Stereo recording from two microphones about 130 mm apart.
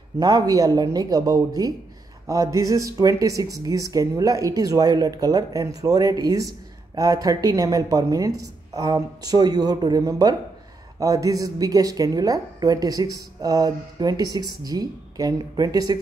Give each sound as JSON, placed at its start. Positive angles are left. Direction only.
{"t": 0.2, "sound": "speech", "side_deg": -30}